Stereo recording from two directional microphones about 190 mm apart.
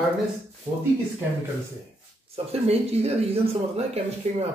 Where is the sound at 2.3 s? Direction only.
30° right (ahead or behind).